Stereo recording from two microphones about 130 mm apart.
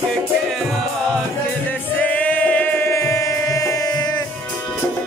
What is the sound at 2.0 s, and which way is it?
Music, 10° left (ahead or behind).